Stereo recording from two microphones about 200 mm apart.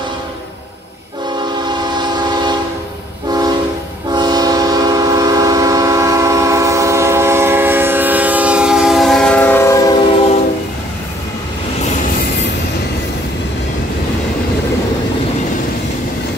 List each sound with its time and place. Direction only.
2.0 s train: 20° right (ahead or behind); by 9.8 s 10° left (ahead or behind)